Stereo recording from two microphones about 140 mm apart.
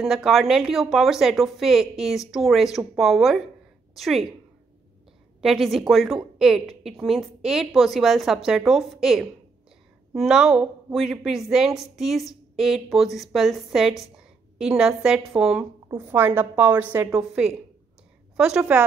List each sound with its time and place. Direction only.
0.0 s a woman's voice: centre (ahead or behind)
5.4 s a woman's voice: centre (ahead or behind); by 17.3 s 15° right (ahead or behind)
18.3 s a sound: 5° right (ahead or behind)
18.6 s a woman's voice: 15° right (ahead or behind)